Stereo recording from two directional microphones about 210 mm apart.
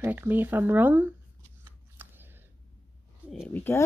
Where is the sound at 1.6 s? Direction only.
10° right (ahead or behind).